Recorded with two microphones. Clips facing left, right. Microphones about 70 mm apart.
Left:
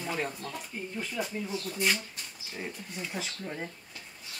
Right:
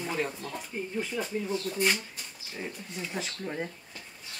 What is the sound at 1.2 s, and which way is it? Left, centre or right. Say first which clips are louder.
Speech: right 1 dB; right.